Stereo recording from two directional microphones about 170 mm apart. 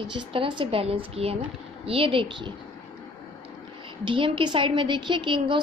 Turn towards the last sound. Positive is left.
turn(degrees=-30)  # may be behind; listen again after turning